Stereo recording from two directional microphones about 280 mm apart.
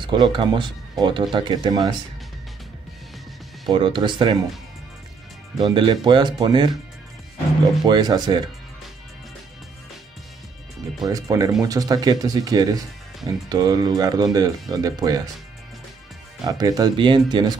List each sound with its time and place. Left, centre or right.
0.0 s speech: centre
3.7 s speech: centre
5.6 s speech: centre
7.8 s speech: centre
11.1 s speech: centre
16.4 s speech: centre